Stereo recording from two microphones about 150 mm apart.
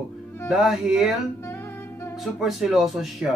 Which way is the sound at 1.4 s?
15° left (ahead or behind).